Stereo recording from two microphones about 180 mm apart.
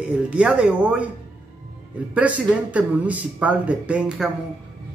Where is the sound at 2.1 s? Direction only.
10° right (ahead or behind).